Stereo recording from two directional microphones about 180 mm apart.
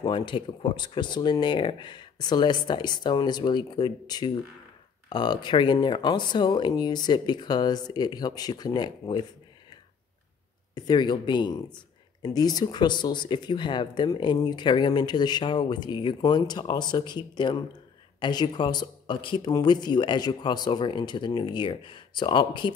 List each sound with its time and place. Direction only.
0.0 s speech: 25° left (ahead or behind)
10.7 s speech: 25° left (ahead or behind)